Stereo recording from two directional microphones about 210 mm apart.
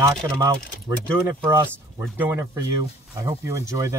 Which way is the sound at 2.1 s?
10° right (ahead or behind).